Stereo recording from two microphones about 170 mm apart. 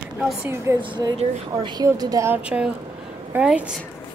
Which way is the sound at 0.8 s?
25° right (ahead or behind).